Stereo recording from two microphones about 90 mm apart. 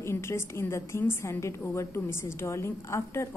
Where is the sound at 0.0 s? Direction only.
30° left (ahead or behind).